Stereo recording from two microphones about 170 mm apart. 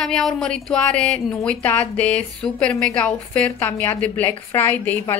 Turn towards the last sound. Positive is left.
turn(degrees=10)  # may be behind; listen again after turning